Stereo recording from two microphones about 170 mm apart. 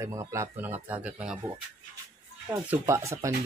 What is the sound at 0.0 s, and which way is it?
Speech, 15° right (ahead or behind).